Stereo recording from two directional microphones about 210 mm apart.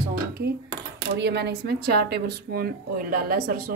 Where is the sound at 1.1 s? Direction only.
50° right (ahead or behind).